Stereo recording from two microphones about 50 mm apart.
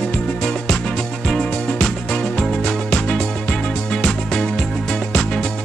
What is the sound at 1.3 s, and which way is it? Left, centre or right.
Music, centre.